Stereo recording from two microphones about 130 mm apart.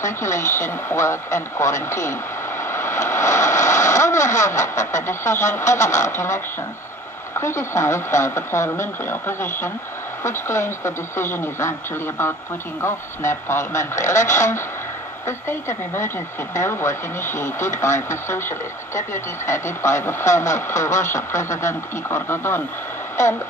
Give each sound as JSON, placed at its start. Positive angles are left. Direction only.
{"t": 0.0, "sound": "speech", "side_deg": 20}
{"t": 12.8, "sound": "speech", "side_deg": 20}